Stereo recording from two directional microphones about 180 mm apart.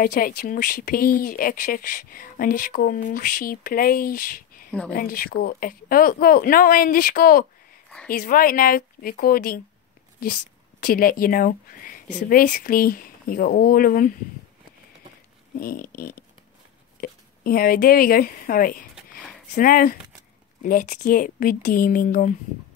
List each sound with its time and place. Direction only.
0.0 s speech: 55° left (ahead or behind)
4.6 s speech: 5° left (ahead or behind)
4.9 s speech: 55° left (ahead or behind)
10.8 s speech: 55° left (ahead or behind)
15.6 s a sound: 55° left (ahead or behind)
17.0 s speech: 55° left (ahead or behind)